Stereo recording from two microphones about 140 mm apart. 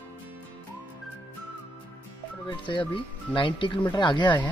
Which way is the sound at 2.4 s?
35° left (ahead or behind).